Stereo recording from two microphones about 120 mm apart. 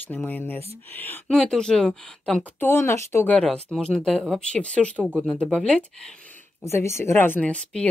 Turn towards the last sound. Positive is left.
turn(degrees=10)  # may be behind; listen again after turning